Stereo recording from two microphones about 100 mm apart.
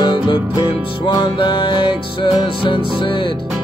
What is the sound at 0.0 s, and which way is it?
Music, 50° left (ahead or behind).